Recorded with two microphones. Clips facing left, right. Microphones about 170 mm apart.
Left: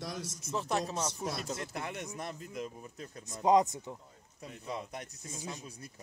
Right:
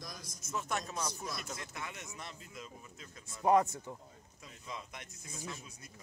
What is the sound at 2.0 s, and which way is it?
Speech, 50° left (ahead or behind).